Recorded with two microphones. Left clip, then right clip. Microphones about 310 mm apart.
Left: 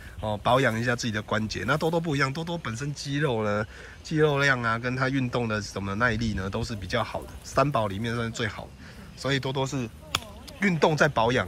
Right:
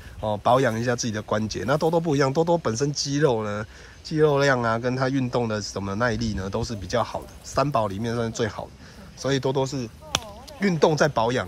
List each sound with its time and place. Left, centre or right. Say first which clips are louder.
0.2 s speech: right 3 dB; centre